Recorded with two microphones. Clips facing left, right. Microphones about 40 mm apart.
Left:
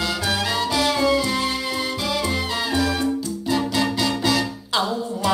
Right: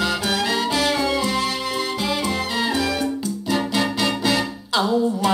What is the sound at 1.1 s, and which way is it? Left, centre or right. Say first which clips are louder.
Music: left 1 dB; right.